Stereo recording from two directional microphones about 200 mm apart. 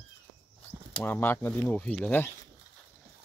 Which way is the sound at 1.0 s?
10° left (ahead or behind).